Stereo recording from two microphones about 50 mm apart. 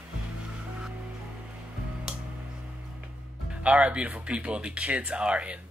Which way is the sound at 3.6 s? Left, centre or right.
Right.